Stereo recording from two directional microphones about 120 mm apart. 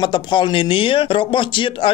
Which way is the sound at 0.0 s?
40° left (ahead or behind).